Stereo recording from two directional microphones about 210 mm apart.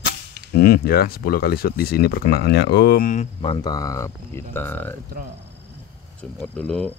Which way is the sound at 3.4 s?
20° left (ahead or behind).